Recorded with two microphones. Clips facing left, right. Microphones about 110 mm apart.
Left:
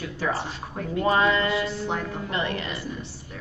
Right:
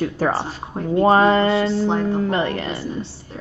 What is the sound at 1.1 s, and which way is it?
A woman's voice, 40° right (ahead or behind).